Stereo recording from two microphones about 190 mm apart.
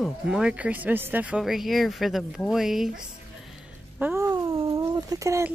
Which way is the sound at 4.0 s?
15° right (ahead or behind).